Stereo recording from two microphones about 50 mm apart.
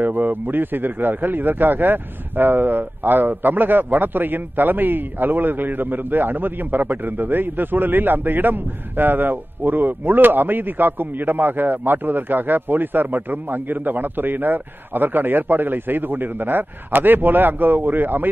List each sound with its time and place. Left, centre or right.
0.0 s a man's voice: right